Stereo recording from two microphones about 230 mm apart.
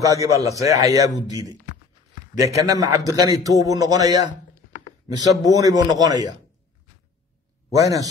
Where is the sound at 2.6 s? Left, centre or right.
Centre.